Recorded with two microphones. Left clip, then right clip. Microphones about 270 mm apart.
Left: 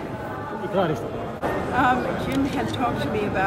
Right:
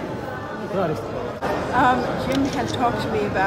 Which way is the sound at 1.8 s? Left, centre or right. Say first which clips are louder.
Right 2 dB; centre.